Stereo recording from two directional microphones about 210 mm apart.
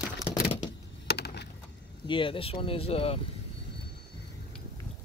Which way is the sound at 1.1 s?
50° left (ahead or behind).